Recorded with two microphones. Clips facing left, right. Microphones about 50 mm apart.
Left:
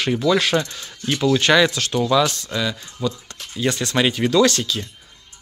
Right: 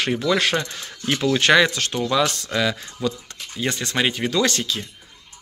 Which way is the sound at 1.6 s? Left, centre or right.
Right.